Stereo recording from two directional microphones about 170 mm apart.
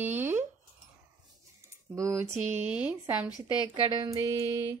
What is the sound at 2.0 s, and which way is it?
Speech, 20° right (ahead or behind).